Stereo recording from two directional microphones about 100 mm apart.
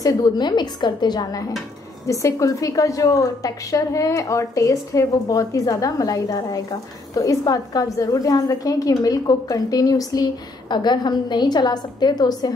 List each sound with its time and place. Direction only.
0.0 s a woman's voice: 40° left (ahead or behind)
2.0 s a woman's voice: 30° left (ahead or behind)